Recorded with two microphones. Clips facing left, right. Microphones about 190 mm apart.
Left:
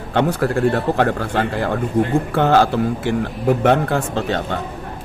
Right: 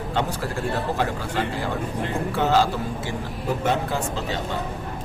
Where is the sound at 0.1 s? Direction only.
60° left (ahead or behind).